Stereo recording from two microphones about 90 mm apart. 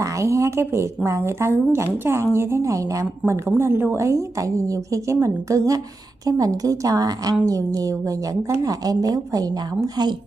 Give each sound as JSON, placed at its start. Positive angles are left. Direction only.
{"t": 0.0, "sound": "a woman's voice", "side_deg": -35}